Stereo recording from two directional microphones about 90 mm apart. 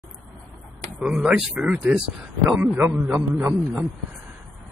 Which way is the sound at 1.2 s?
10° right (ahead or behind).